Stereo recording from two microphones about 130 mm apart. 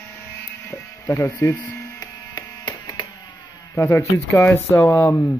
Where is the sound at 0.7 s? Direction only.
20° left (ahead or behind).